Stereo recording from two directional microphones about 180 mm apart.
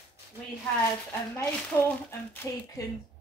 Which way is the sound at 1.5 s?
10° left (ahead or behind).